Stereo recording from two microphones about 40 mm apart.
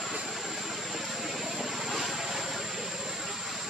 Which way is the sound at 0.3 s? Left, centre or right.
Centre.